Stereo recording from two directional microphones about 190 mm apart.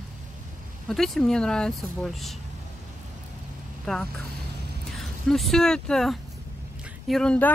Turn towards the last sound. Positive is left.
turn(degrees=5)  # may be behind; listen again after turning